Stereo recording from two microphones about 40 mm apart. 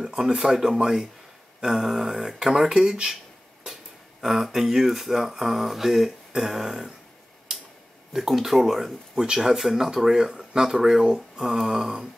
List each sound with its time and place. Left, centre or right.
0.0 s speech: centre
4.2 s speech: centre
7.5 s a sound: centre
8.1 s speech: centre